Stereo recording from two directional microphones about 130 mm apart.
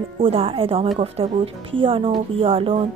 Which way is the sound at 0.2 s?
45° right (ahead or behind).